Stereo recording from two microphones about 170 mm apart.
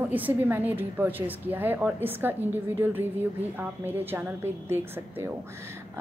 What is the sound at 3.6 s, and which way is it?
A woman's voice, 10° right (ahead or behind).